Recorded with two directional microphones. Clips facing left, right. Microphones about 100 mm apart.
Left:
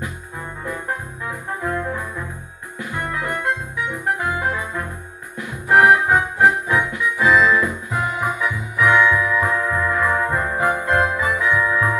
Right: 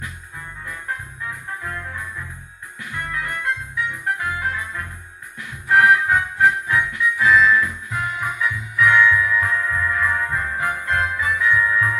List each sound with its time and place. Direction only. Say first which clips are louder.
0.7 s brass instrument: left 4 dB; 25° left (ahead or behind)
2.8 s music: left 3 dB; 20° left (ahead or behind)